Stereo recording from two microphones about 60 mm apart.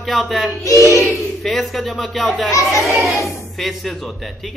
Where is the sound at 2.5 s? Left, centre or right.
Left.